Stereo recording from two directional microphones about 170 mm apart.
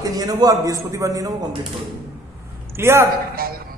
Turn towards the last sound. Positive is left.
turn(degrees=-60)  # may be behind; listen again after turning